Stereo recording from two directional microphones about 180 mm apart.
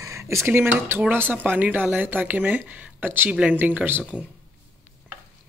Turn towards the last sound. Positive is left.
turn(degrees=-5)  # may be behind; listen again after turning